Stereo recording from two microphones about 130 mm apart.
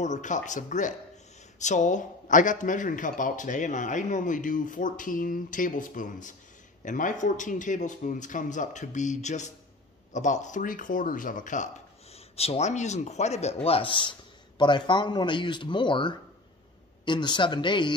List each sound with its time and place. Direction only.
0.0 s a man's voice: 70° left (ahead or behind)
12.1 s speech: 50° left (ahead or behind)